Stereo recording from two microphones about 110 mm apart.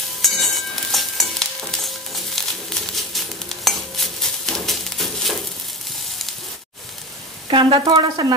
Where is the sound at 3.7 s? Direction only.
Centre (ahead or behind).